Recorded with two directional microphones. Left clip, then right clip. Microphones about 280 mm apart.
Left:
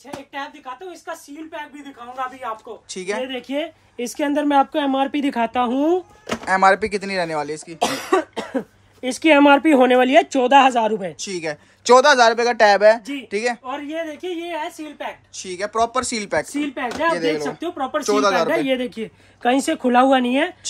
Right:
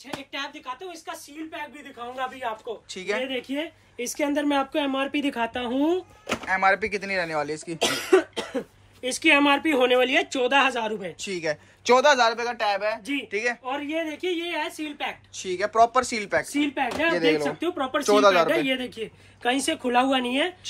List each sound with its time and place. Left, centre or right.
0.3 s speech: centre
2.9 s speech: centre
4.0 s speech: left
6.4 s speech: centre
7.8 s speech: left
11.2 s speech: centre
15.3 s speech: centre
18.5 s speech: left